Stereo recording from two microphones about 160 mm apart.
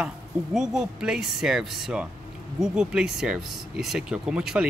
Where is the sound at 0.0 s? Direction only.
5° right (ahead or behind).